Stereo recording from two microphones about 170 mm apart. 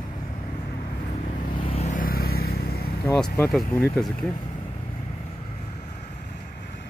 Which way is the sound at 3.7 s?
10° left (ahead or behind).